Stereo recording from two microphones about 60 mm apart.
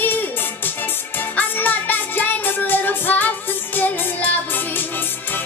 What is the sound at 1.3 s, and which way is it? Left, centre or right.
Music, left.